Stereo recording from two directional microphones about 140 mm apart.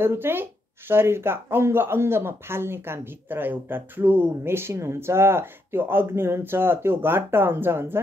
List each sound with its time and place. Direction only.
0.0 s speech: 15° right (ahead or behind)